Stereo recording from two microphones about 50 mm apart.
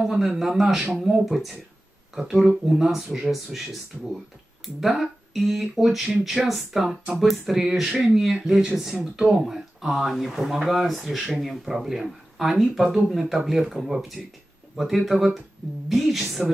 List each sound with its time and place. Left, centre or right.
0.0 s speech: centre
3.9 s speech: right
4.7 s speech: centre